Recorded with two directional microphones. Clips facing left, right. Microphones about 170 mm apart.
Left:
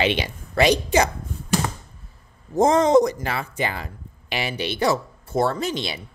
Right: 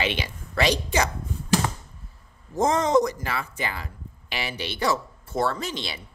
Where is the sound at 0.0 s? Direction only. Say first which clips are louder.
Left 5 dB; 20° left (ahead or behind).